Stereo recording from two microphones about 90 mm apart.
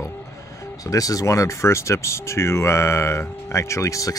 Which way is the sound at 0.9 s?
40° left (ahead or behind).